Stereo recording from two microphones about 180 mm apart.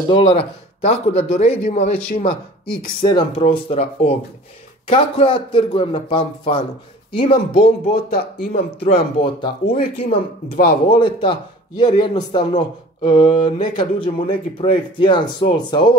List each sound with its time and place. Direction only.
0.1 s speech: 35° left (ahead or behind)
3.0 s speech: 25° left (ahead or behind)
7.6 s speech: 60° left (ahead or behind)
8.7 s speech: 30° left (ahead or behind)